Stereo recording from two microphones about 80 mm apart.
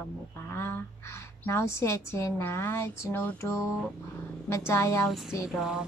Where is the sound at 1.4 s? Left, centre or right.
Left.